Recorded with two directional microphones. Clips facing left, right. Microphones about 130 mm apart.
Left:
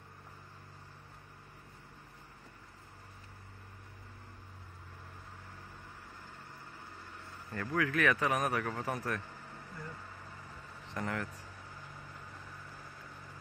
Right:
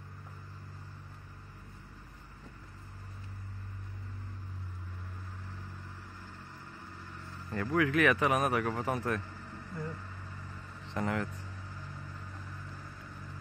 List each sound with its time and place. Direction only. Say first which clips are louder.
7.5 s a man's voice: right 4 dB; 20° right (ahead or behind)
11.0 s a man's voice: right 4 dB; 20° right (ahead or behind)